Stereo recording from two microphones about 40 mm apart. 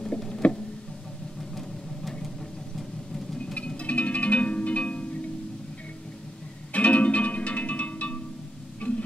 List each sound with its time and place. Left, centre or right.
0.4 s music: left
3.5 s music: left
6.7 s music: left